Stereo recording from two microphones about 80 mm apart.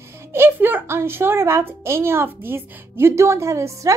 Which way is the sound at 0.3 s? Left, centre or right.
Right.